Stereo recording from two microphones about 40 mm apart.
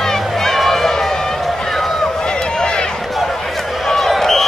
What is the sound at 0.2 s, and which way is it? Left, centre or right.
Run, centre.